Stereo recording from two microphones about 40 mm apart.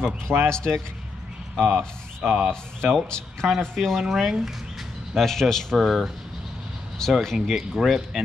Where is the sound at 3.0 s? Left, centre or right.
Centre.